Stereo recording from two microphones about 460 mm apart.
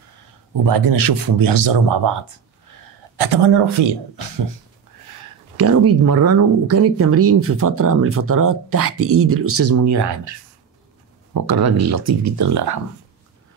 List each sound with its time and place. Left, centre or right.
0.5 s speech: right
3.2 s speech: right
5.6 s speech: right
11.3 s speech: right